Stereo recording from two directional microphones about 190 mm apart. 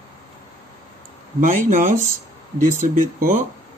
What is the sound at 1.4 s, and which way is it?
Speech, 45° right (ahead or behind).